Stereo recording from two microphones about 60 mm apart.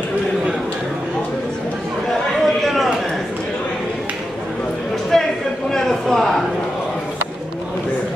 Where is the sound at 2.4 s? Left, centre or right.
Centre.